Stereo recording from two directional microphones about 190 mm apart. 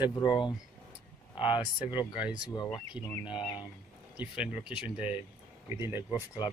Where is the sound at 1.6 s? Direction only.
10° right (ahead or behind).